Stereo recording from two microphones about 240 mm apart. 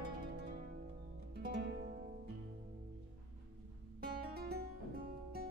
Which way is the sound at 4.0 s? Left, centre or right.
Right.